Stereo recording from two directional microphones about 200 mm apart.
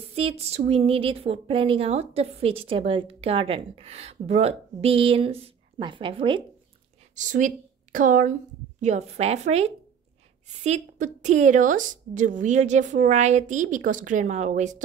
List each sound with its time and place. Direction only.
0.1 s speech: 30° right (ahead or behind)
7.2 s a woman's voice: 40° right (ahead or behind)